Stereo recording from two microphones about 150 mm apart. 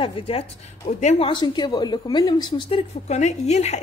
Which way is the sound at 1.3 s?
30° left (ahead or behind).